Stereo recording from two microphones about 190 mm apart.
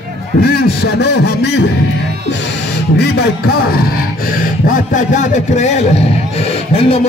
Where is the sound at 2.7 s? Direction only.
60° left (ahead or behind); by 7.0 s 30° left (ahead or behind).